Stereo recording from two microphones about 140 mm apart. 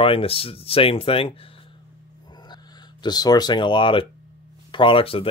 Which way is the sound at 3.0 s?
30° left (ahead or behind).